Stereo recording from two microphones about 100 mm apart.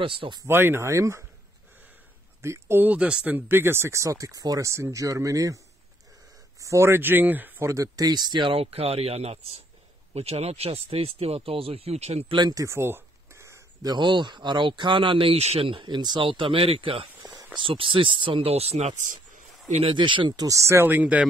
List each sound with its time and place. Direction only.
0.0 s speech: 60° right (ahead or behind)
0.5 s speech: 25° right (ahead or behind)
2.4 s speech: 25° right (ahead or behind)
6.6 s speech: 30° right (ahead or behind)
7.7 s speech: 35° right (ahead or behind)
8.5 s speech: 85° right
12.4 s speech: 40° right (ahead or behind)
12.6 s a sound: 25° right (ahead or behind)
13.8 s speech: 50° right (ahead or behind)
16.3 s speech: 60° right (ahead or behind); by 18.9 s 90° right
19.8 s speech: 55° right (ahead or behind); by 21.3 s 15° right (ahead or behind)